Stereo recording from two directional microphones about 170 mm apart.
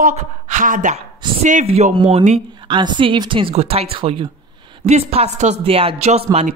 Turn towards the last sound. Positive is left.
turn(degrees=-35)  # may be behind; listen again after turning